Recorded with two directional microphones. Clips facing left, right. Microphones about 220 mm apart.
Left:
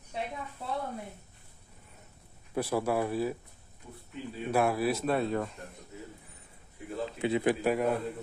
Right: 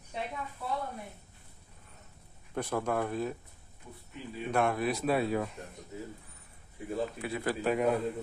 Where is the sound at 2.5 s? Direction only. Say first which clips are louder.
Left 3 dB; 5° left (ahead or behind).